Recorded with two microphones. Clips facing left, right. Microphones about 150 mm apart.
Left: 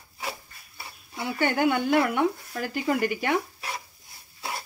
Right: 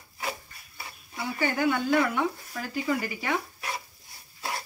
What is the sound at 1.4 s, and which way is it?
Speech, 65° left (ahead or behind).